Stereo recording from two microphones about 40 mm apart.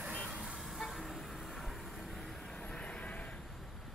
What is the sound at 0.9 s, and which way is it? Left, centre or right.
Vehicle, centre.